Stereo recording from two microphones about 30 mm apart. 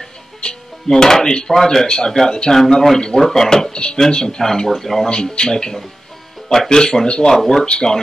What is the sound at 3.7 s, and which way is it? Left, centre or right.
Speech, left.